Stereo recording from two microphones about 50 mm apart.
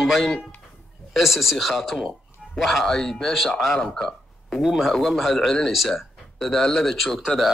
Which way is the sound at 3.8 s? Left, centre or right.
Centre.